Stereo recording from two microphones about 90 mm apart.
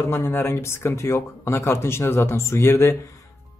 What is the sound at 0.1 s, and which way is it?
A man's voice, 25° left (ahead or behind).